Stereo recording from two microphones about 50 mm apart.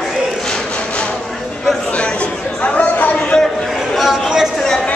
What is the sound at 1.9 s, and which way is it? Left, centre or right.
Chatter, left.